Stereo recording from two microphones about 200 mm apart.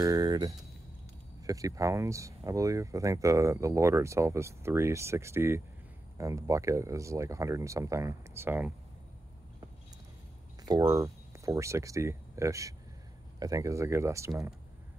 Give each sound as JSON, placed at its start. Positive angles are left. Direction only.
{"t": 0.0, "sound": "speech", "side_deg": -15}
{"t": 10.6, "sound": "speech", "side_deg": -20}